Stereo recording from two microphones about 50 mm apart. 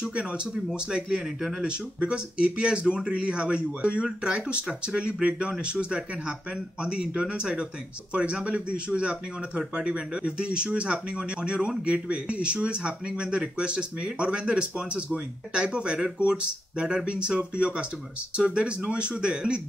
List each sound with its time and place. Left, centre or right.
0.0 s speech: right